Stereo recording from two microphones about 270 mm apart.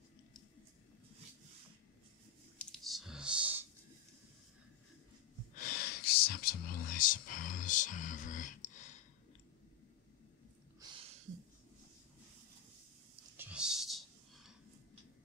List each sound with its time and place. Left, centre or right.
2.6 s computer keyboard: centre
5.5 s a sound: left
13.4 s whispering: centre